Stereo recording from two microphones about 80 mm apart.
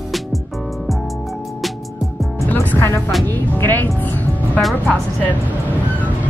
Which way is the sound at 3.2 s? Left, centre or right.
Left.